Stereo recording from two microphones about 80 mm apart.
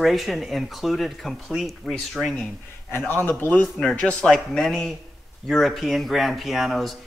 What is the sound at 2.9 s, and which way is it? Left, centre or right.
A man's voice, left.